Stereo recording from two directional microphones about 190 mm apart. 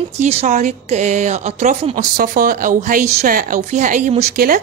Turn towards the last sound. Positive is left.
turn(degrees=-50)  # may be behind; listen again after turning